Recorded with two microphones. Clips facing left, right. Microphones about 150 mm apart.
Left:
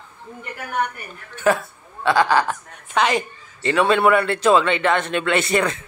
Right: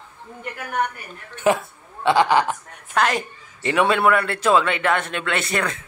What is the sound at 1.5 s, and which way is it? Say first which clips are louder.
Speech: even; 20° right (ahead or behind).